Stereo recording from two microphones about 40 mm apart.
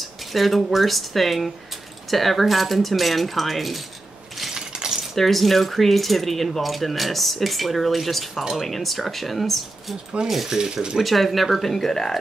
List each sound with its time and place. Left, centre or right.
0.0 s speech: centre
4.6 s a sound: centre
5.1 s speech: centre
10.2 s speech: centre
10.6 s speech: centre
11.0 s speech: centre